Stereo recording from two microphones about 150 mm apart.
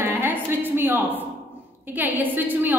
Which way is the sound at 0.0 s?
15° right (ahead or behind).